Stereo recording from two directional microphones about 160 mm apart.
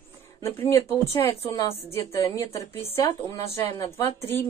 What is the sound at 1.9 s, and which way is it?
A woman's voice, 20° left (ahead or behind).